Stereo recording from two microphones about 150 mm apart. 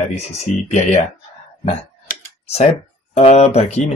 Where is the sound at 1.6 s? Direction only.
45° left (ahead or behind).